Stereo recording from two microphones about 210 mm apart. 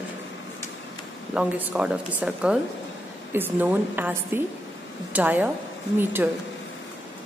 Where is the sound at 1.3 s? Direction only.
5° right (ahead or behind).